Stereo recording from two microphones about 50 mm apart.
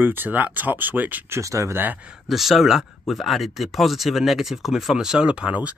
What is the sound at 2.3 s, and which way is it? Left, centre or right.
Speech, centre.